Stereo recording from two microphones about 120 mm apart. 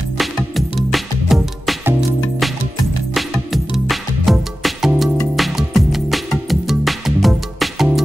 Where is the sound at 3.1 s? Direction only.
Centre (ahead or behind).